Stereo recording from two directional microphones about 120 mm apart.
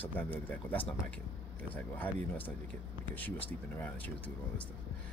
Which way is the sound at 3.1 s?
15° left (ahead or behind).